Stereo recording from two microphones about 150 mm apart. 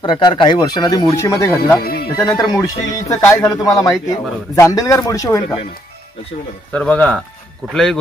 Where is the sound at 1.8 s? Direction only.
90° left.